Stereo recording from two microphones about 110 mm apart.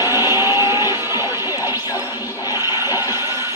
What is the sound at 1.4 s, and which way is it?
Music, 35° left (ahead or behind).